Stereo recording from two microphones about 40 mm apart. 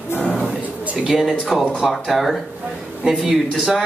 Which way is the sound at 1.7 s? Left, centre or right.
Centre.